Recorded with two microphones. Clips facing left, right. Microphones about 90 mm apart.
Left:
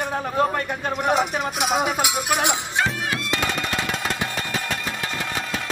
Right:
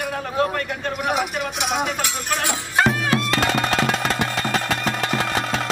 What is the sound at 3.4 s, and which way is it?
Music, 90° right.